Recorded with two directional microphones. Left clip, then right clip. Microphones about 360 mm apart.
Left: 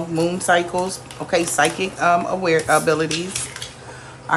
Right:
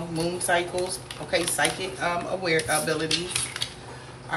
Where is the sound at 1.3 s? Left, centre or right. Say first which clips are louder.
Left 7 dB; centre.